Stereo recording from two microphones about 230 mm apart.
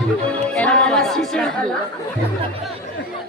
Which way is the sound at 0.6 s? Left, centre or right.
Centre.